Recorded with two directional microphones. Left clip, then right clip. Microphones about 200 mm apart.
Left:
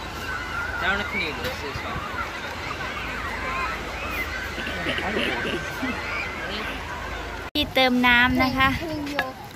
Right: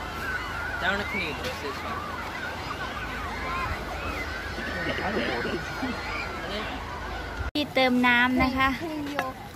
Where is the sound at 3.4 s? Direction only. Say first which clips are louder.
Left 3 dB; 55° right (ahead or behind).